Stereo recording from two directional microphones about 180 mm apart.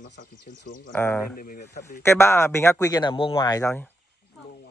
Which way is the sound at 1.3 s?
50° left (ahead or behind).